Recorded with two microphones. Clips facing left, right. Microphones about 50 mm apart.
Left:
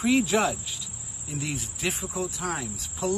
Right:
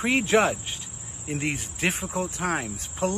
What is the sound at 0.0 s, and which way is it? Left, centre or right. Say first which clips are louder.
Speech: right 2 dB; right.